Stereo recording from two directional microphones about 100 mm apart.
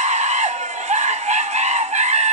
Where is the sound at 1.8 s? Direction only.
90° right.